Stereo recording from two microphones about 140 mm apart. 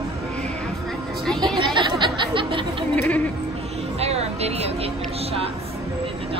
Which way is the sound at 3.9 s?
50° right (ahead or behind).